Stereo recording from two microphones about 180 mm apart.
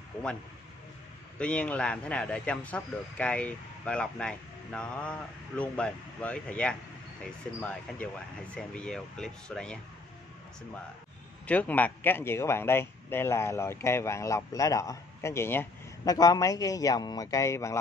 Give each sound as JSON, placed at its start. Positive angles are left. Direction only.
{"t": 1.4, "sound": "speech", "side_deg": 5}
{"t": 11.4, "sound": "speech", "side_deg": 10}